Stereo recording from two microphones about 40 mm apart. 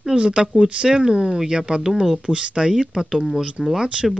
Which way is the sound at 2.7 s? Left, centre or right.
Centre.